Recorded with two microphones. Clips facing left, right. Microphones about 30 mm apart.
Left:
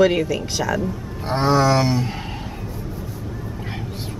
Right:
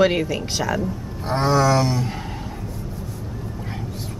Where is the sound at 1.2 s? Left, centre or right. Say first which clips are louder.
Left 1 dB; centre.